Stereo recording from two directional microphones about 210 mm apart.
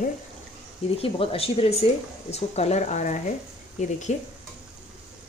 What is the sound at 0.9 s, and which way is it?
A woman's voice, 25° left (ahead or behind).